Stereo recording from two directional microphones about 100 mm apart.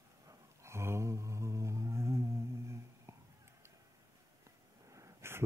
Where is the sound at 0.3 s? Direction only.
30° right (ahead or behind).